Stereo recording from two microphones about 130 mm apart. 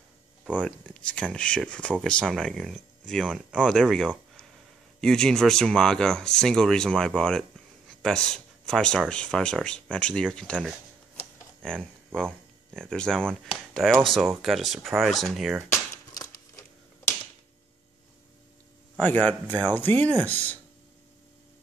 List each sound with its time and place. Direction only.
0.5 s speech: 10° left (ahead or behind)
16.1 s a sound: 25° left (ahead or behind)
18.9 s speech: 15° left (ahead or behind)